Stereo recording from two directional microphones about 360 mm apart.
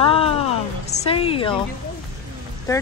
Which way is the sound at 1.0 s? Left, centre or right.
Centre.